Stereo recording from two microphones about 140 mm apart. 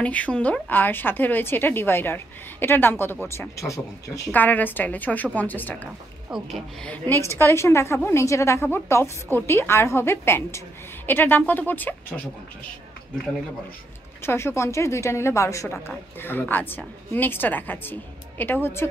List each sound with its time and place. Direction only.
0.0 s a woman's voice: 10° left (ahead or behind)
4.3 s a woman's voice: 10° left (ahead or behind)
7.2 s a woman's voice: 20° left (ahead or behind)
14.2 s a woman's voice: 20° left (ahead or behind)